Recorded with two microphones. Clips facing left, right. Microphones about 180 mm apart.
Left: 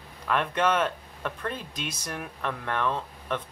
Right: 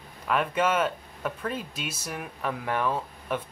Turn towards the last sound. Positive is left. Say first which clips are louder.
# right 1 dB
turn(degrees=-10)  # may be behind; listen again after turning